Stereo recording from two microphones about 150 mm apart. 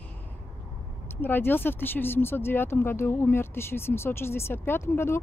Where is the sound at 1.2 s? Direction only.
15° left (ahead or behind).